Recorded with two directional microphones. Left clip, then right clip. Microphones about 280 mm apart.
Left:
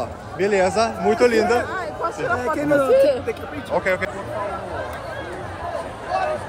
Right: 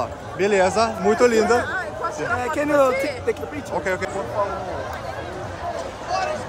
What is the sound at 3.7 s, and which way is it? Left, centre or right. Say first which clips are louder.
Speech: left 4 dB; centre.